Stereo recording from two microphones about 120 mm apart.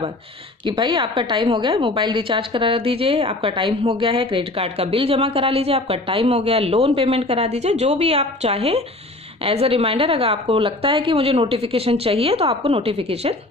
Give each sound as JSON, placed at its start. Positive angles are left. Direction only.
{"t": 0.7, "sound": "a woman's voice", "side_deg": -40}